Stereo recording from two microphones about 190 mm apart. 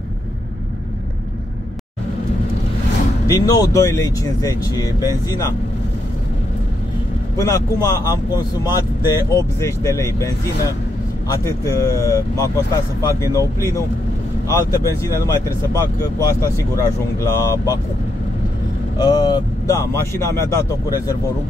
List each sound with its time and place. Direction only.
3.3 s speech: 20° left (ahead or behind)
7.3 s speech: 15° left (ahead or behind)
11.4 s speech: 15° left (ahead or behind)
14.5 s speech: 20° left (ahead or behind)
18.9 s speech: 25° left (ahead or behind)